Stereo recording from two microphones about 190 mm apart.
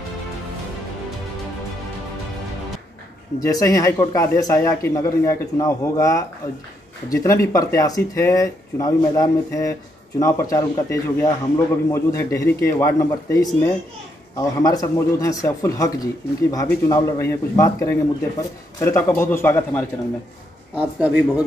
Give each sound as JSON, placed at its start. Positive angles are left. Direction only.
{"t": 3.3, "sound": "speech", "side_deg": 20}
{"t": 20.7, "sound": "speech", "side_deg": -5}